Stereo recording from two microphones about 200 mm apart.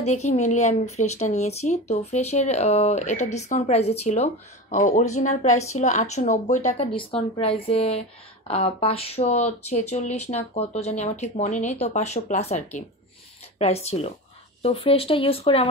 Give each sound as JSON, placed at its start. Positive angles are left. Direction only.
{"t": 0.0, "sound": "speech", "side_deg": 35}